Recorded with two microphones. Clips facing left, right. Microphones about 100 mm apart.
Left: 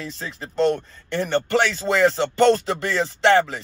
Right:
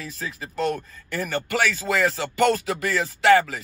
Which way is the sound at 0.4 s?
35° left (ahead or behind).